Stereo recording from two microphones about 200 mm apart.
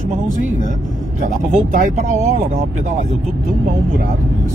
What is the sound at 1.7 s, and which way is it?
Speech, 40° right (ahead or behind).